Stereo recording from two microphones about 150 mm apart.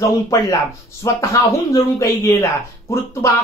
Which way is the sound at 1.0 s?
20° left (ahead or behind).